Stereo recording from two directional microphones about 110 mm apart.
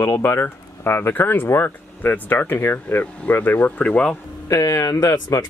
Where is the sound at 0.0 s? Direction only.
20° left (ahead or behind).